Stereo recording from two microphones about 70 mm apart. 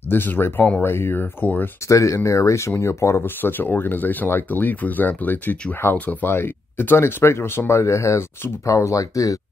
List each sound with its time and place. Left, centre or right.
0.1 s speech: left
0.8 s speech: left
1.9 s speech: left
3.4 s speech: left